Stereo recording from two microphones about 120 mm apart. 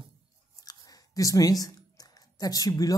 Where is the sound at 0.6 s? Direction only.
30° left (ahead or behind).